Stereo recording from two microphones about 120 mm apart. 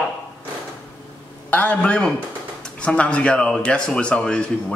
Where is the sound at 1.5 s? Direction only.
15° left (ahead or behind).